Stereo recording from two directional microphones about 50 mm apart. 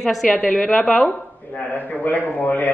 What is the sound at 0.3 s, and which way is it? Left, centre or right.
Speech, left.